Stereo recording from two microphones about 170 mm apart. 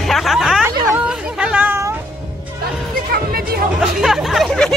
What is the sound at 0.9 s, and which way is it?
Chatter, 5° right (ahead or behind).